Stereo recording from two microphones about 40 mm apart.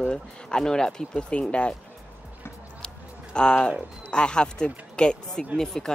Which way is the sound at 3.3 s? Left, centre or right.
Left.